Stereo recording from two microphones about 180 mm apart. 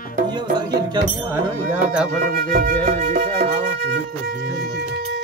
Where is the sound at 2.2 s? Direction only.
55° right (ahead or behind).